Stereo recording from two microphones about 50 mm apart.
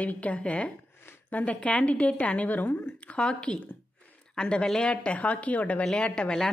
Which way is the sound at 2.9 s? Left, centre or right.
Left.